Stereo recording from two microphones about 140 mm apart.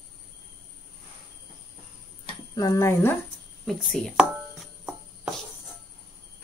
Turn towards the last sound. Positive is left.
turn(degrees=0)  # may be behind; listen again after turning